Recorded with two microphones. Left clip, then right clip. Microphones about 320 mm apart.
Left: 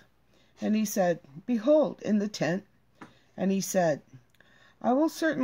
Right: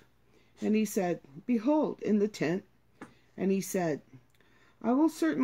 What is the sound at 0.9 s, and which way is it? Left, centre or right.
Speech, left.